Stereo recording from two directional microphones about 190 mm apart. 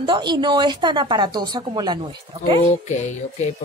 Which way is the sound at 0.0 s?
25° right (ahead or behind).